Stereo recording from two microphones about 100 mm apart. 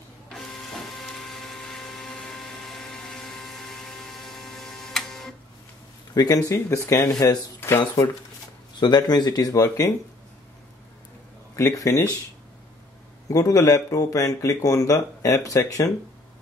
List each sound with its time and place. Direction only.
0.3 s printer: 5° left (ahead or behind)
6.1 s speech: 40° left (ahead or behind)
7.8 s speech: 50° left (ahead or behind); by 9.9 s 35° left (ahead or behind)
11.5 s speech: 35° left (ahead or behind)
13.3 s speech: 35° left (ahead or behind)